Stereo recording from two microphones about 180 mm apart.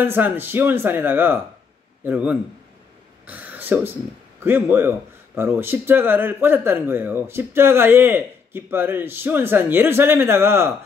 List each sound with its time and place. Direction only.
0.0 s speech: 10° right (ahead or behind)
3.3 s throat clearing: 10° right (ahead or behind)
4.4 s speech: 10° right (ahead or behind)